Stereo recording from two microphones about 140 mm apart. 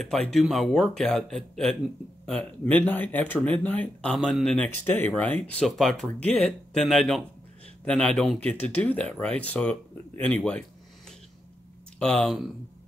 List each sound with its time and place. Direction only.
0.0 s speech: centre (ahead or behind)
4.6 s speech: 15° left (ahead or behind)
12.0 s speech: 5° left (ahead or behind)